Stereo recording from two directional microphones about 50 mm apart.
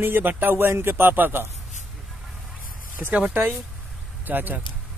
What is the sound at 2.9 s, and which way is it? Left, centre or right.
Speech, right.